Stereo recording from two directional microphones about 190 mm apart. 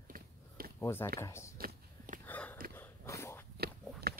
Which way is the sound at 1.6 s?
50° right (ahead or behind).